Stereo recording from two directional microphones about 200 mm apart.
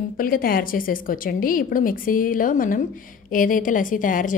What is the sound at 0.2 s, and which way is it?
A woman's voice, 45° left (ahead or behind).